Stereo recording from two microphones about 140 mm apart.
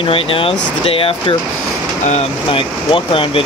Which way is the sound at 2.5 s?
40° left (ahead or behind).